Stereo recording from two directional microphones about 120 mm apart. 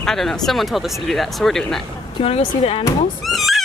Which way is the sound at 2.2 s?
55° left (ahead or behind).